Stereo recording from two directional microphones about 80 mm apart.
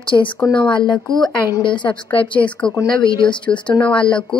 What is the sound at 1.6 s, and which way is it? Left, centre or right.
Speech, left.